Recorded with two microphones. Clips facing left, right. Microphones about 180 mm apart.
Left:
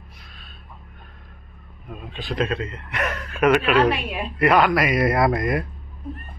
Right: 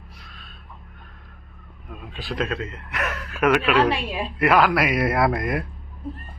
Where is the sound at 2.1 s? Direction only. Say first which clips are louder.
Left 2 dB; centre (ahead or behind).